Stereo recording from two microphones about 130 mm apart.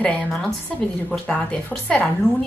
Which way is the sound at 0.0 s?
5° left (ahead or behind).